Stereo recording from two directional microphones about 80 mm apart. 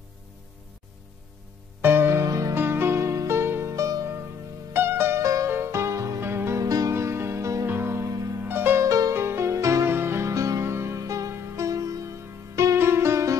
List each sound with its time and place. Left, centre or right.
1.8 s music: right
2.5 s music: right
4.7 s music: right
5.2 s music: right
6.6 s music: right
7.0 s music: right
8.1 s music: right
8.5 s music: right
8.8 s music: right